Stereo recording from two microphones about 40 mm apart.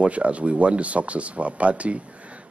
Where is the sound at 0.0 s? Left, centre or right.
Right.